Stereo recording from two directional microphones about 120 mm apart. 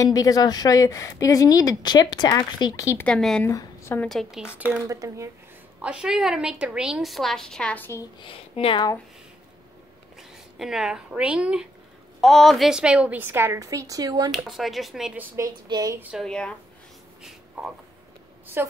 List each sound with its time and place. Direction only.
0.0 s speech: 30° left (ahead or behind)
3.0 s speech: 5° left (ahead or behind)
3.4 s speech: 20° left (ahead or behind)
4.1 s a woman's voice: centre (ahead or behind)
4.8 s speech: 25° right (ahead or behind)
5.8 s a woman's voice: 5° right (ahead or behind); by 8.0 s 15° left (ahead or behind)
8.2 s speech: 50° left (ahead or behind)
10.3 s speech: 5° right (ahead or behind)
12.2 s a woman's voice: centre (ahead or behind); by 14.3 s 30° right (ahead or behind)
14.3 s a woman's voice: centre (ahead or behind)
15.1 s a woman's voice: 25° right (ahead or behind)
16.2 s speech: 5° left (ahead or behind)
17.2 s a sound: 5° right (ahead or behind)
18.6 s speech: 20° right (ahead or behind)